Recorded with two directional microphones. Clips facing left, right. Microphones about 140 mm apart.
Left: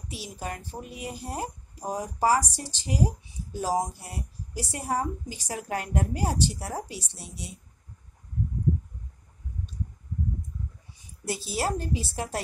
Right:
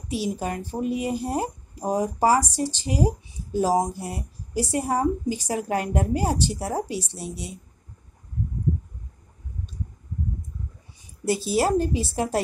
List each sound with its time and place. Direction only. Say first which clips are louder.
0.1 s speech: right 9 dB; 15° right (ahead or behind)
11.2 s speech: right 7 dB; 15° right (ahead or behind)